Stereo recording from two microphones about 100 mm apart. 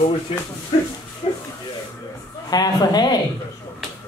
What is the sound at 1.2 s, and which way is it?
Speech, 90° left.